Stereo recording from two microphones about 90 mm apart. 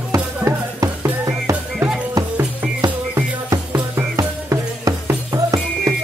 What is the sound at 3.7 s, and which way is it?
Music, 20° right (ahead or behind).